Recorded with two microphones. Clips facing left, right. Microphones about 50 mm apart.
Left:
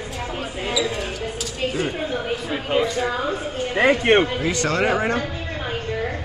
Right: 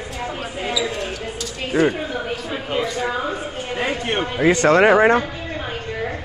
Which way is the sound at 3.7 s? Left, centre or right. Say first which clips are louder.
Left 7 dB; left.